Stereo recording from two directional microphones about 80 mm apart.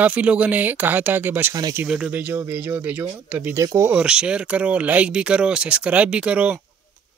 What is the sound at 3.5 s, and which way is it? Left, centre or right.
Speech, right.